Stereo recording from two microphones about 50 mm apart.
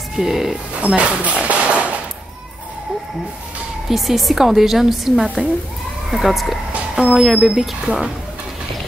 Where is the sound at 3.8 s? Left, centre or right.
Centre.